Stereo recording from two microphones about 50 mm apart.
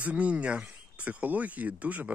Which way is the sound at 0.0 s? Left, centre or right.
Right.